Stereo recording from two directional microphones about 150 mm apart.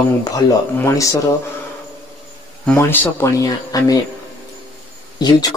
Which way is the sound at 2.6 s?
15° left (ahead or behind).